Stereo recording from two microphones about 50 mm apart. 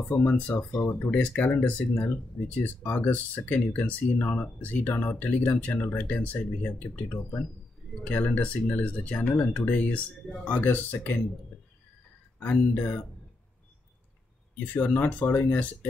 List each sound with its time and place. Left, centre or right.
0.1 s speech: left
12.5 s speech: left
14.7 s speech: left